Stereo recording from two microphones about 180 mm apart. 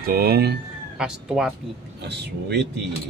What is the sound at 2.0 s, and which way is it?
Speech, 70° right (ahead or behind).